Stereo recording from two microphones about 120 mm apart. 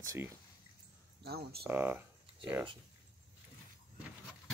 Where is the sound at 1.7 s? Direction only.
15° right (ahead or behind).